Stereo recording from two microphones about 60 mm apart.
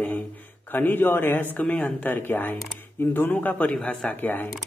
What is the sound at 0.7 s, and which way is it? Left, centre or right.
Speech, left.